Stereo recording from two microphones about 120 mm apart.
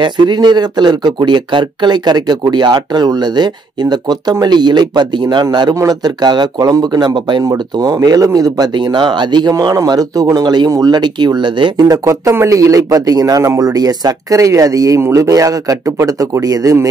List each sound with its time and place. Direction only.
0.0 s speech: 35° right (ahead or behind)